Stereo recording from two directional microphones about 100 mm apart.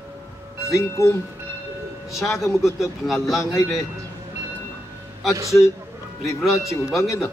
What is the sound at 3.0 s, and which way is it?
Speech, centre (ahead or behind).